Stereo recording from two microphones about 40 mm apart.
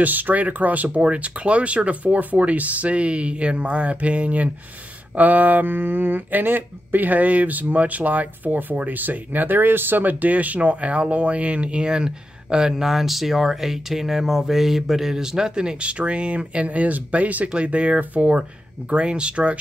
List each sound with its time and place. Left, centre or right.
0.0 s speech: right